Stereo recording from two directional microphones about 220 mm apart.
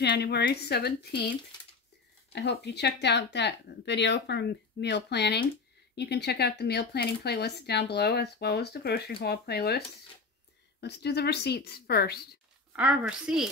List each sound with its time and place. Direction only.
0.0 s speech: 50° left (ahead or behind)
2.3 s speech: 50° left (ahead or behind)
12.7 s a woman's voice: 5° right (ahead or behind)